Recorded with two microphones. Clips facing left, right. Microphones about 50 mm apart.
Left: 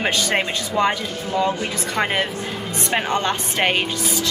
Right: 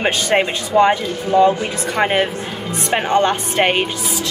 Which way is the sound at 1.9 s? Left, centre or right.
Centre.